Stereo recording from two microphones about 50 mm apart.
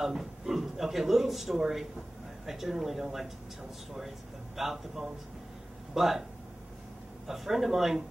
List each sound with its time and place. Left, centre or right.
0.0 s speech: centre
4.6 s speech: centre
7.2 s speech: centre